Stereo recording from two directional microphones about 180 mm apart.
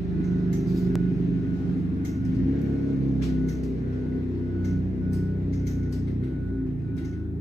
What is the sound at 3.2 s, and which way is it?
Music, centre (ahead or behind).